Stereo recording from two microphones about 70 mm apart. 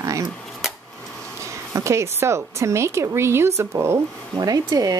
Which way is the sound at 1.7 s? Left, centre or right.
Right.